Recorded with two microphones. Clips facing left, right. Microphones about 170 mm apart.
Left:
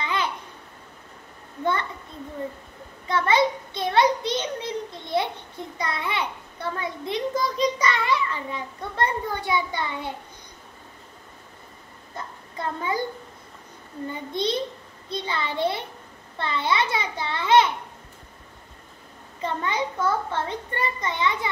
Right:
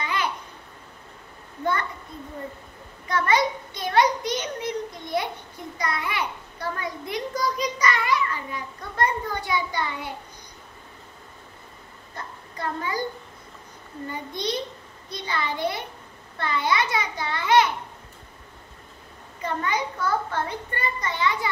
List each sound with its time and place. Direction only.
0.0 s babbling: 25° left (ahead or behind)
3.1 s a child's voice: 25° left (ahead or behind)
12.5 s a child's voice: 25° left (ahead or behind)
14.3 s a child's voice: 25° left (ahead or behind)
19.4 s a child's voice: 25° left (ahead or behind)